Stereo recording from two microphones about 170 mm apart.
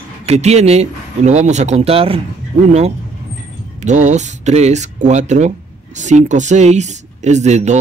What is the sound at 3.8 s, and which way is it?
Speech, 45° right (ahead or behind).